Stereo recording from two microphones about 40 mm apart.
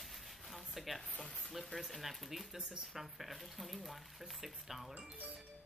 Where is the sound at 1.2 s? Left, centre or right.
Centre.